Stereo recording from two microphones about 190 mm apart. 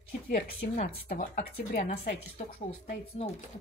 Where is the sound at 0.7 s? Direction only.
40° left (ahead or behind).